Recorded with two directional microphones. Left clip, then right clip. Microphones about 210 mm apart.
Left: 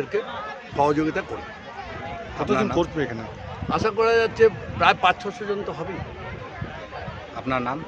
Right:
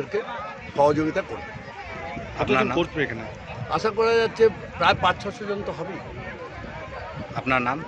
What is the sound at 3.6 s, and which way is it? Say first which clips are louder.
A man's voice: left 1 dB; 5° left (ahead or behind).